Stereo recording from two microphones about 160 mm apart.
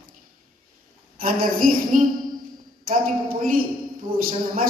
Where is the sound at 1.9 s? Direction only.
55° right (ahead or behind).